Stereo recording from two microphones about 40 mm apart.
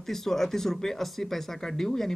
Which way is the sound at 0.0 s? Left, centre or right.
Centre.